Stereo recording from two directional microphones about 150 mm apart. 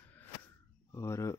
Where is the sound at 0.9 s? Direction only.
20° left (ahead or behind).